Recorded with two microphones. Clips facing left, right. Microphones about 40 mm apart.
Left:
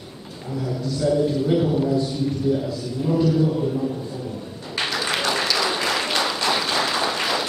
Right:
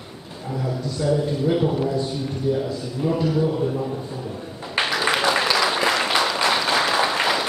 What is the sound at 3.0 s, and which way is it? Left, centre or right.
Speech, right.